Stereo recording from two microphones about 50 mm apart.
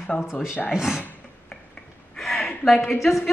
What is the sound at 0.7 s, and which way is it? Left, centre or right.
Speech, centre.